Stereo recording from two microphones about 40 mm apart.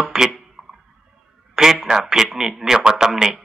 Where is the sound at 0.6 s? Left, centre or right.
Right.